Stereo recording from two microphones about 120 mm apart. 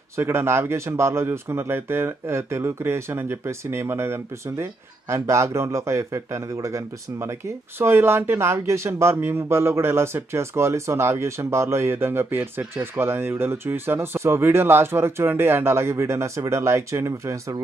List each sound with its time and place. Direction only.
0.1 s speech: 20° right (ahead or behind)